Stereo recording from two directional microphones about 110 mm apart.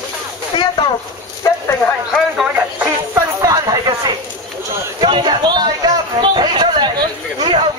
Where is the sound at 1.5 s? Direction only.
30° left (ahead or behind).